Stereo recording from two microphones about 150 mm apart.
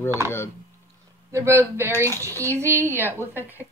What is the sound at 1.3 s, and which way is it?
Speech, 15° right (ahead or behind).